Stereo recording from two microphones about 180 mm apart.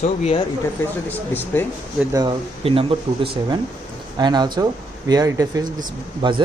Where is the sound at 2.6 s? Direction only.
30° right (ahead or behind).